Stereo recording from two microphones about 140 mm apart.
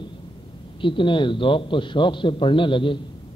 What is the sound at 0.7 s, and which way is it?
A man's voice, 35° left (ahead or behind).